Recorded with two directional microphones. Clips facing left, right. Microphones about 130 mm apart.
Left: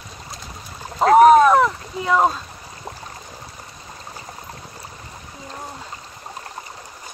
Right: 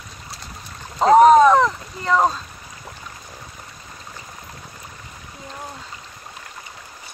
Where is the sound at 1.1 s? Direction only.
5° left (ahead or behind).